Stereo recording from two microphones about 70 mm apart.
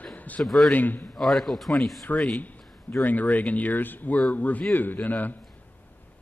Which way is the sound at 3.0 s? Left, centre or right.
Left.